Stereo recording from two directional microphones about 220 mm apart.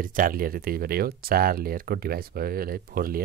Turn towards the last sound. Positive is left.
turn(degrees=-40)  # may be behind; listen again after turning